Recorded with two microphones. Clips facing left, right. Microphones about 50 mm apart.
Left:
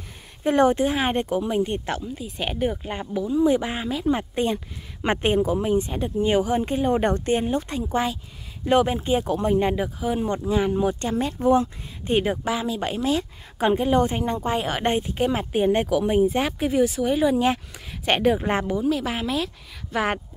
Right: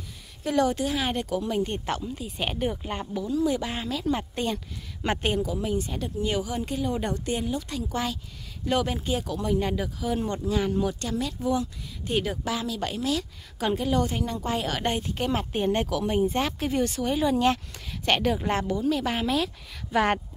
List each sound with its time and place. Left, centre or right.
0.4 s speech: left
1.9 s speech: centre; by 15.0 s left
15.0 s speech: centre
18.9 s speech: centre